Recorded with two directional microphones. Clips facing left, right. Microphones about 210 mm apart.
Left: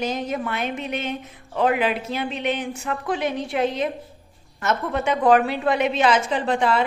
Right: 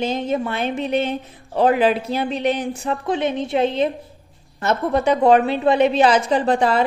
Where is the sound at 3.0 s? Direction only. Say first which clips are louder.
Right 3 dB; 25° right (ahead or behind).